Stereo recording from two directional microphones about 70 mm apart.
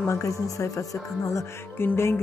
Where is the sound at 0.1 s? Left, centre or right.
Left.